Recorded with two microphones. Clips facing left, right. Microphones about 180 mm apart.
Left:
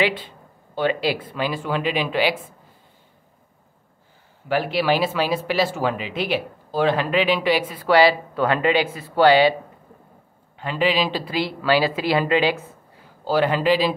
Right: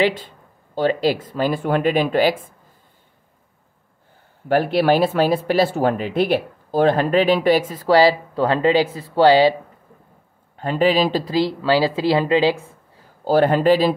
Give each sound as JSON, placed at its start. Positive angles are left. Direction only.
{"t": 0.0, "sound": "speech", "side_deg": -45}
{"t": 4.5, "sound": "speech", "side_deg": -50}
{"t": 10.6, "sound": "speech", "side_deg": -45}
{"t": 13.2, "sound": "speech", "side_deg": -50}